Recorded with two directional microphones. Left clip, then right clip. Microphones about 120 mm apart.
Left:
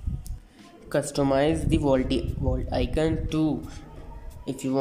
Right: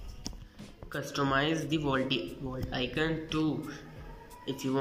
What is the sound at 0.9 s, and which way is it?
Speech, 50° left (ahead or behind).